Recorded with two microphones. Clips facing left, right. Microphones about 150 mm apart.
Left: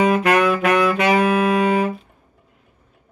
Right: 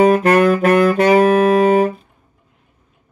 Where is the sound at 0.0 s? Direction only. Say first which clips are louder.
Right 5 dB; 35° right (ahead or behind).